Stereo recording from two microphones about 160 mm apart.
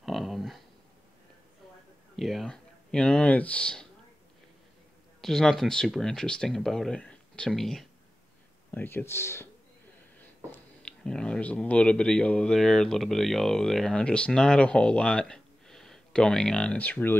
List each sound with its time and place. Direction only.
0.0 s a sound: centre (ahead or behind)
2.1 s speech: centre (ahead or behind)
5.2 s speech: centre (ahead or behind)
8.7 s speech: 15° left (ahead or behind)
10.5 s speech: 5° left (ahead or behind)